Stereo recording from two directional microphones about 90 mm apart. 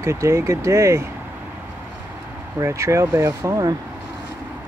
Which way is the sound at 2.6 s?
35° right (ahead or behind).